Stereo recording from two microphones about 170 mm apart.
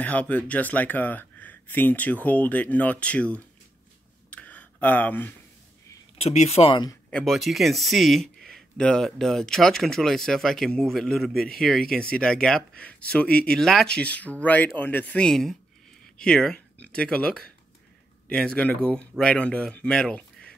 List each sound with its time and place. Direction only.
0.0 s speech: 10° left (ahead or behind)
4.3 s a sound: 10° left (ahead or behind)
6.1 s speech: 40° left (ahead or behind)
7.1 s speech: 5° left (ahead or behind)